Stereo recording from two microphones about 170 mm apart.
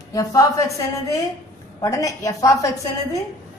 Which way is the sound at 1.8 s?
20° left (ahead or behind).